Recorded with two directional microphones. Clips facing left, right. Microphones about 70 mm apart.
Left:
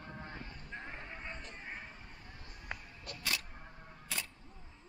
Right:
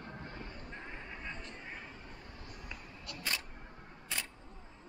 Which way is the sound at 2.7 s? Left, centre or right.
Left.